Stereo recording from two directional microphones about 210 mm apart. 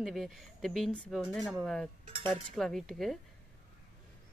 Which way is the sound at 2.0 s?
25° right (ahead or behind).